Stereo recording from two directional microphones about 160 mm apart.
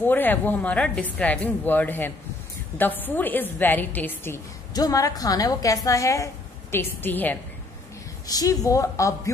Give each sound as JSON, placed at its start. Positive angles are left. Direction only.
{"t": 0.0, "sound": "a woman's voice", "side_deg": 10}
{"t": 8.3, "sound": "speech", "side_deg": 20}